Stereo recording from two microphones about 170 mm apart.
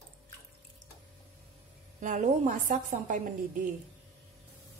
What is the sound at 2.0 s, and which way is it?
A woman's voice, 50° right (ahead or behind).